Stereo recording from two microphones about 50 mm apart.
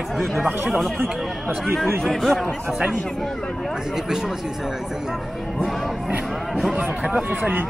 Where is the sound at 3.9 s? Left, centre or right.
Centre.